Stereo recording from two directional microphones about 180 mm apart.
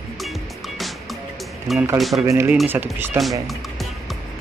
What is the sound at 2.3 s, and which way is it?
Speech, 15° right (ahead or behind).